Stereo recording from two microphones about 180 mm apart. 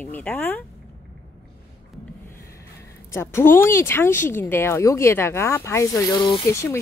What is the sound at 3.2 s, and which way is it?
Speech, 15° left (ahead or behind).